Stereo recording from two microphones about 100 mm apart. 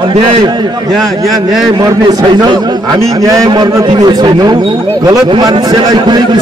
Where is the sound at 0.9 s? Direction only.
Centre (ahead or behind).